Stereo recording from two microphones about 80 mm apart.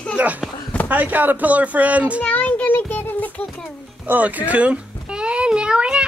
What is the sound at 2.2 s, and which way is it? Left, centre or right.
Child singing, left.